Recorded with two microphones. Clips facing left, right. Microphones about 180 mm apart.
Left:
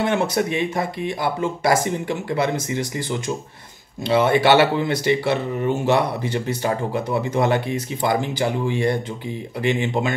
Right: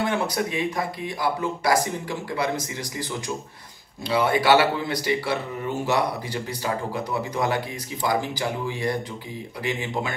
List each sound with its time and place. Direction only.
0.0 s speech: 25° left (ahead or behind)
4.1 s speech: 25° left (ahead or behind)